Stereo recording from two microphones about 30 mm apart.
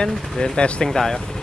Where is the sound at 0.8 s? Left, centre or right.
Centre.